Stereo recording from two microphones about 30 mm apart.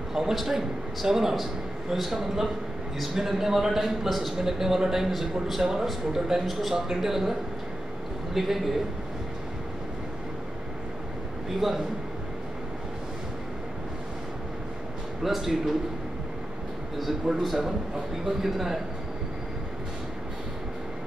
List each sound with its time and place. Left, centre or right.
0.1 s a man's voice: centre
8.4 s a man's voice: centre
11.6 s a man's voice: centre
15.2 s a man's voice: centre
18.2 s a man's voice: centre